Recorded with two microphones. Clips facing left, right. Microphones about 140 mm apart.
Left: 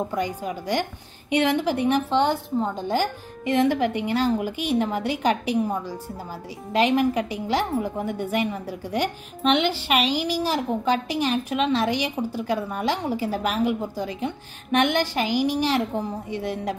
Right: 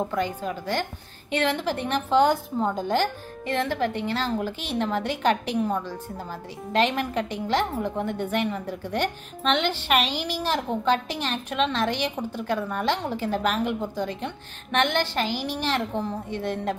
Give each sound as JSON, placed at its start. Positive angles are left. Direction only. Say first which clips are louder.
{"t": 0.1, "sound": "a woman's voice", "louder": "even", "side_deg": 10}
{"t": 2.0, "sound": "a woman's voice", "louder": "right 2 dB", "side_deg": 0}
{"t": 2.9, "sound": "a woman's voice", "louder": "even", "side_deg": 10}